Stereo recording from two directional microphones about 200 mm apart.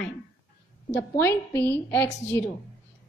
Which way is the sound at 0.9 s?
10° left (ahead or behind).